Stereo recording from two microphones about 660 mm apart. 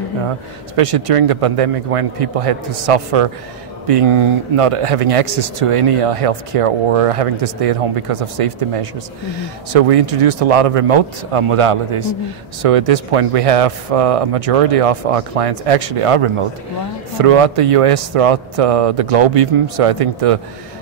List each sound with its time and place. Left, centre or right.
0.7 s speech: right